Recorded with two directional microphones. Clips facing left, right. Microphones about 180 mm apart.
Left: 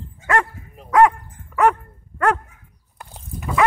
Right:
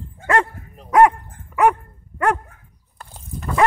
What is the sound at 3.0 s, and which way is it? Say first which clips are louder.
Dog: even; 10° left (ahead or behind).